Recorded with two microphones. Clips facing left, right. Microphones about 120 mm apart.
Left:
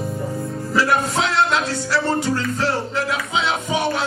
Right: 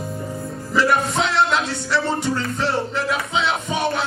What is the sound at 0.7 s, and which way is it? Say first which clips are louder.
Music: even; centre (ahead or behind).